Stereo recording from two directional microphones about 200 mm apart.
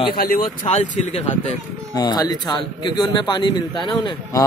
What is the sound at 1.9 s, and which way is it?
A man's voice, 20° left (ahead or behind).